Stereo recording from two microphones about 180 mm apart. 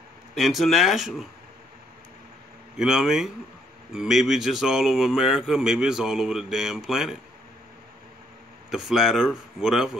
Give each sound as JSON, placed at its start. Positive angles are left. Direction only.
{"t": 0.3, "sound": "speech", "side_deg": 0}
{"t": 2.8, "sound": "speech", "side_deg": -5}
{"t": 8.6, "sound": "speech", "side_deg": 0}